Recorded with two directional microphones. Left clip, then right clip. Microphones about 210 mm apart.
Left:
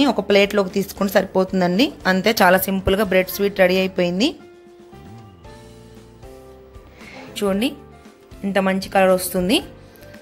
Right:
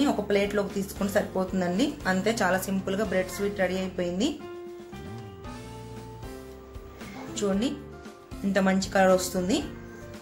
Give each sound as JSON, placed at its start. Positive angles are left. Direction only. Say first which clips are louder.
{"t": 0.0, "sound": "speech", "louder": "left 9 dB", "side_deg": 40}
{"t": 7.3, "sound": "a woman's voice", "louder": "left 7 dB", "side_deg": 35}